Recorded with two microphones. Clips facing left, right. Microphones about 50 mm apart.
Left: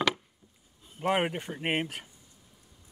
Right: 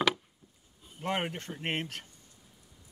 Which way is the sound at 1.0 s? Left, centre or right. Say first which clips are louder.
Left 5 dB; centre.